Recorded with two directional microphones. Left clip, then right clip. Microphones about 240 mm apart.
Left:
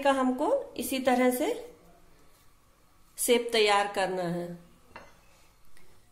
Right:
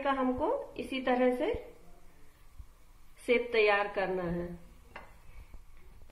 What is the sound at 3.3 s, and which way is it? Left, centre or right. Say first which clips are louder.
A woman's voice: left 3 dB; left.